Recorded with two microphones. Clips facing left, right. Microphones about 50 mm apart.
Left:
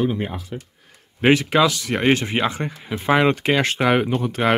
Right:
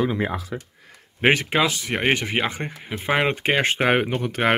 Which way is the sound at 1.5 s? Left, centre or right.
Right.